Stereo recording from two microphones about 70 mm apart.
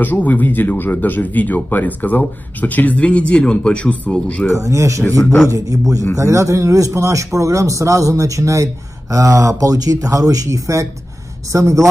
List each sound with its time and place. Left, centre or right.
0.0 s speech: left
4.5 s speech: right